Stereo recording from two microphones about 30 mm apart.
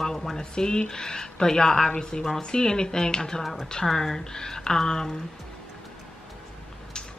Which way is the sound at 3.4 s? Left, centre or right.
Centre.